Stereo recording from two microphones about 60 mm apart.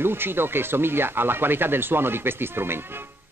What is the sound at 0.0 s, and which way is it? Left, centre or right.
Speech, right.